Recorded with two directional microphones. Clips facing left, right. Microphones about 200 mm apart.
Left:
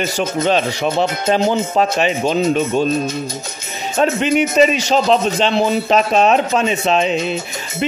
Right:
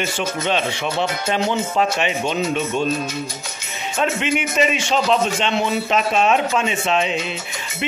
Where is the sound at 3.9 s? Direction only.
40° left (ahead or behind).